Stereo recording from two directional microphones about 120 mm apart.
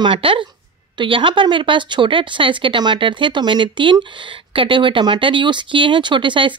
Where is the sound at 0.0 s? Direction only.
45° right (ahead or behind).